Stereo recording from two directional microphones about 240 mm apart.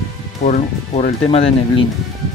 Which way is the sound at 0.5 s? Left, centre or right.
Left.